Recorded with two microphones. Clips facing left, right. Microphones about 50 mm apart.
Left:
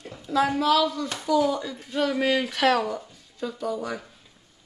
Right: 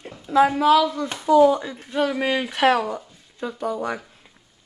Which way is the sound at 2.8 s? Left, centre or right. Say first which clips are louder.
Right 2 dB; right.